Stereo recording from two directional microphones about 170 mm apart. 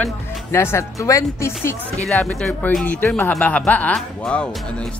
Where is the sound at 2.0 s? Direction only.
5° left (ahead or behind).